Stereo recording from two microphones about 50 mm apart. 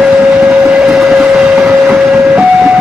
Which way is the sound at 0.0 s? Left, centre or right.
Centre.